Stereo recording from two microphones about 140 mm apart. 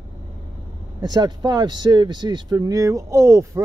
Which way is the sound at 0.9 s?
30° right (ahead or behind).